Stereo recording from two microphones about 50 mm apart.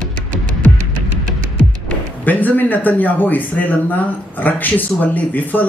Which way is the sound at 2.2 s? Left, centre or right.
Left.